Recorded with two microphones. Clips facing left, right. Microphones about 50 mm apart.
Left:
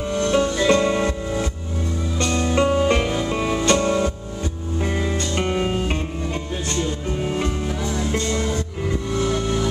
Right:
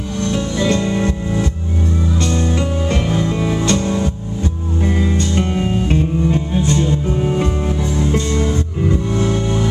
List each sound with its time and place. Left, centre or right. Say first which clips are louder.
0.2 s music: left 2 dB; left
0.6 s music: even; centre
2.5 s music: left 2 dB; left
3.3 s music: right 2 dB; centre
4.8 s music: right 5 dB; centre
5.1 s music: right 4 dB; centre
7.2 s music: right 5 dB; centre
9.2 s music: right 1 dB; right